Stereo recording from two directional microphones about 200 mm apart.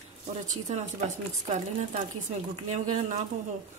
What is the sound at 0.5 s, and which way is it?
A woman's voice, 35° right (ahead or behind).